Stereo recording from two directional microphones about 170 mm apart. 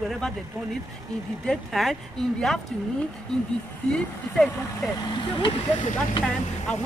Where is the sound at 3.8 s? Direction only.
5° left (ahead or behind).